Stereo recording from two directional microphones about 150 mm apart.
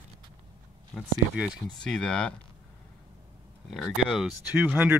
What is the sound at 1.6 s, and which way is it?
Speech, 5° left (ahead or behind).